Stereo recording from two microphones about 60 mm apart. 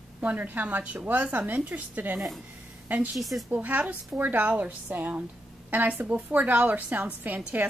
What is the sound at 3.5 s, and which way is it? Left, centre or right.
A woman's voice, right.